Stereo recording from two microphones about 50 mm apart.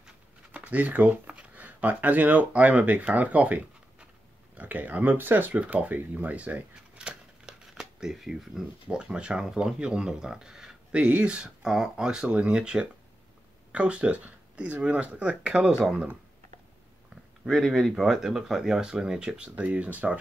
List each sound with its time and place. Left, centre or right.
0.5 s speech: right
5.6 s speech: right
6.7 s scissors: centre
7.8 s speech: centre
8.8 s speech: centre
11.6 s speech: centre
12.3 s speech: right
17.5 s speech: centre; by 20.2 s right